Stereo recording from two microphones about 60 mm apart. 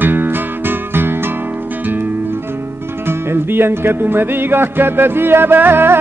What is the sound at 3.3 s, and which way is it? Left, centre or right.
Speech, right.